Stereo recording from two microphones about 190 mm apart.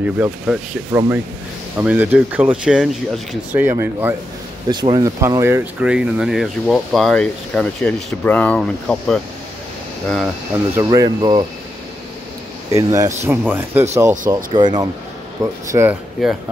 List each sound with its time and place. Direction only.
0.0 s speech: 10° right (ahead or behind)
4.6 s speech: 20° right (ahead or behind); by 10.3 s centre (ahead or behind)
10.8 s speech: 20° right (ahead or behind)
12.7 s speech: 15° right (ahead or behind)
14.3 s speech: 20° right (ahead or behind)